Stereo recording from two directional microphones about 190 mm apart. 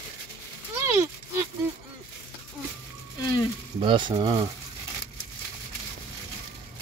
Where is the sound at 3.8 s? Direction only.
25° right (ahead or behind).